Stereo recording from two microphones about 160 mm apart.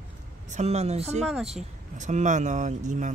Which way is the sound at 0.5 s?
45° right (ahead or behind).